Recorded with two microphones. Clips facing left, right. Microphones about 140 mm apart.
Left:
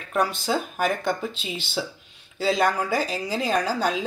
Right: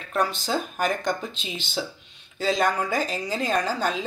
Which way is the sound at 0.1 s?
10° left (ahead or behind).